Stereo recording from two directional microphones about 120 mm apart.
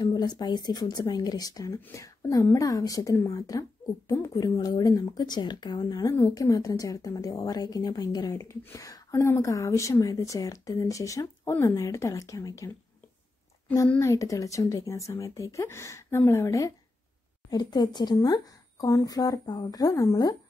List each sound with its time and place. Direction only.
0.0 s a woman's voice: 35° left (ahead or behind)
6.1 s a woman's voice: 25° left (ahead or behind)
13.9 s a woman's voice: 25° left (ahead or behind)
17.5 s speech: 35° left (ahead or behind)